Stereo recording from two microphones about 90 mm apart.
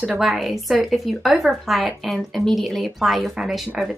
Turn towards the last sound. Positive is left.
turn(degrees=-5)  # may be behind; listen again after turning